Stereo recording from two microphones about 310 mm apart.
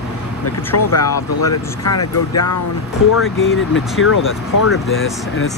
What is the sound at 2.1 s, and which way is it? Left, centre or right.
Speech, left.